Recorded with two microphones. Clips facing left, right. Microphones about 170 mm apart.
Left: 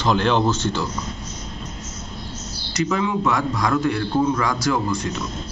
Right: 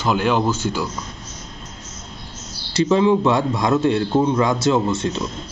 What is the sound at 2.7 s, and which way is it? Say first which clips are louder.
A man's voice: right 6 dB; 30° right (ahead or behind).